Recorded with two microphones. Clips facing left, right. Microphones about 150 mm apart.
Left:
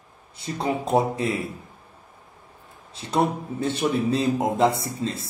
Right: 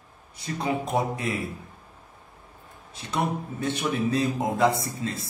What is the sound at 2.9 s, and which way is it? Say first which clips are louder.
A man's voice: left 5 dB; 30° left (ahead or behind).